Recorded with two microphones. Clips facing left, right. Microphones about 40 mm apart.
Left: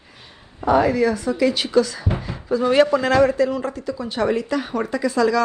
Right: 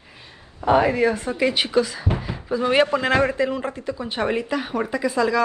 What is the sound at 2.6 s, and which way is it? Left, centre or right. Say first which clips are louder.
A man's voice: left 2 dB; right.